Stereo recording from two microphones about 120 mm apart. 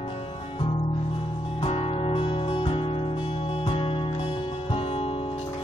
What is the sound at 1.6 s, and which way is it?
Music, 60° left (ahead or behind).